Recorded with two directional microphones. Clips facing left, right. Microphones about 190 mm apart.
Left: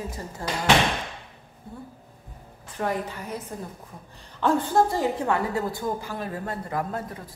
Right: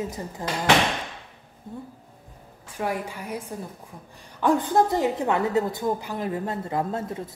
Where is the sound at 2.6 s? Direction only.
10° right (ahead or behind).